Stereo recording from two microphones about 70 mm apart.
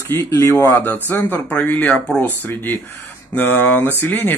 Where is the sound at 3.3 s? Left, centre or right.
Left.